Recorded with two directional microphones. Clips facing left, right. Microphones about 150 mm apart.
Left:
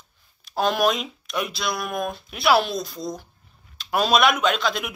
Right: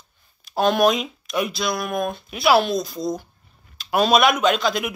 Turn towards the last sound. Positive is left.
turn(degrees=0)  # may be behind; listen again after turning